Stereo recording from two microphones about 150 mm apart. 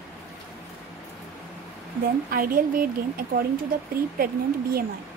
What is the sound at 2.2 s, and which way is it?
A woman's voice, 75° right (ahead or behind).